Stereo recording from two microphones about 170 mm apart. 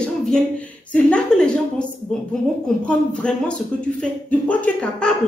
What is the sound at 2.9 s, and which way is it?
A woman's voice, 5° left (ahead or behind).